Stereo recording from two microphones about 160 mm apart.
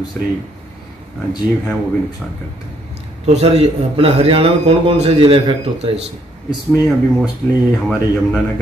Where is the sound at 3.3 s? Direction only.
40° right (ahead or behind).